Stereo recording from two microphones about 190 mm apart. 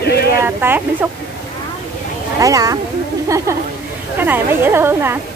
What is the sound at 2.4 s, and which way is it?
A woman's voice, 20° right (ahead or behind).